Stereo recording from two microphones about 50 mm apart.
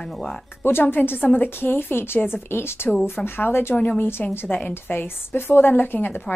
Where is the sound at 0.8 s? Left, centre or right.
Left.